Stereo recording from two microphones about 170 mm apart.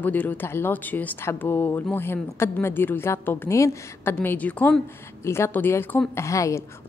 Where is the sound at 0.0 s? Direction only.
10° left (ahead or behind).